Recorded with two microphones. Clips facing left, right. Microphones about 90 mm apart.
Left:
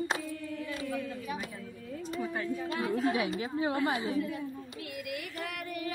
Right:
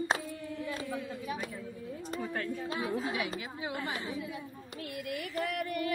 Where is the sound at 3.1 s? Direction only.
35° left (ahead or behind).